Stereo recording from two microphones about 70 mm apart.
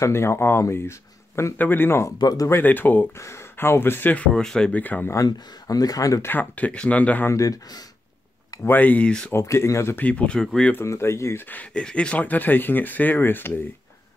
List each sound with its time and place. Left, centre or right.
0.0 s speech: left
2.1 s speech: left
2.6 s speech: left
3.2 s speech: left
4.3 s speech: centre
4.7 s speech: left
5.1 s speech: left
6.2 s speech: left
7.2 s speech: left
8.6 s speech: left
9.3 s speech: left
9.9 s speech: left
10.9 s speech: left
11.5 s speech: centre